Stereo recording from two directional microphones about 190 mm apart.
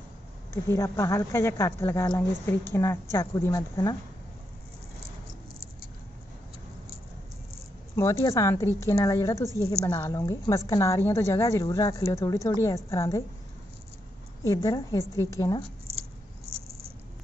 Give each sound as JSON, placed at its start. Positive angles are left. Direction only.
{"t": 0.7, "sound": "speech", "side_deg": 15}
{"t": 7.9, "sound": "speech", "side_deg": 15}
{"t": 14.4, "sound": "speech", "side_deg": 15}
{"t": 16.4, "sound": "purr", "side_deg": -30}